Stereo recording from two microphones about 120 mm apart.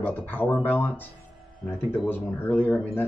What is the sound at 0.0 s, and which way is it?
Speech, 15° left (ahead or behind).